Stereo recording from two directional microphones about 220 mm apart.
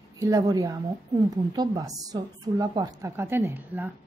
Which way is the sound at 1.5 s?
15° right (ahead or behind).